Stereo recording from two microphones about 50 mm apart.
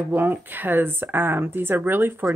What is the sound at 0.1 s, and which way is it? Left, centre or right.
Speech, right.